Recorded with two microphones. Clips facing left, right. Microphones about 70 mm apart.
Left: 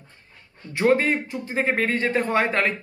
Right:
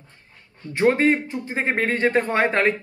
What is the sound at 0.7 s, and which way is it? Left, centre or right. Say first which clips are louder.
Speech: right 2 dB; right.